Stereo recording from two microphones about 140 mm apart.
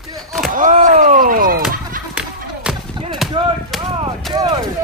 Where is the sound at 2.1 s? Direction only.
5° right (ahead or behind).